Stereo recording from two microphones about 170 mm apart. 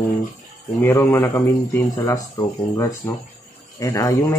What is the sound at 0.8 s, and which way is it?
Speech, 15° left (ahead or behind).